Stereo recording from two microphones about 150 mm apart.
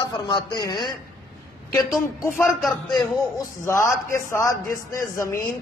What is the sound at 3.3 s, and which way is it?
A man's voice, 20° left (ahead or behind).